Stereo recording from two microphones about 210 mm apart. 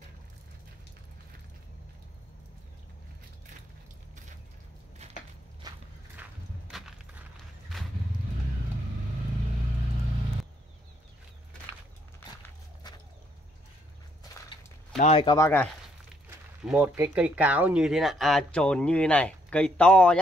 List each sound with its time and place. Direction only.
5.6 s walk: 20° right (ahead or behind)
6.7 s a sound: centre (ahead or behind)
15.0 s speech: 30° left (ahead or behind)
15.2 s speech: 15° left (ahead or behind)
16.6 s speech: 5° right (ahead or behind)